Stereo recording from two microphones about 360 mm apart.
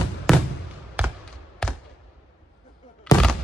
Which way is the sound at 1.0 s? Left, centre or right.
Centre.